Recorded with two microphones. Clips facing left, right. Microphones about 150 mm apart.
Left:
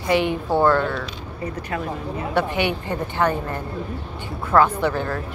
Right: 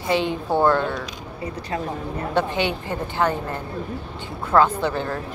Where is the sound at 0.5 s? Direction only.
15° right (ahead or behind).